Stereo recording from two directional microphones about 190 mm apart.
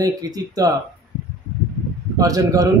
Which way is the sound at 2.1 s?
20° right (ahead or behind).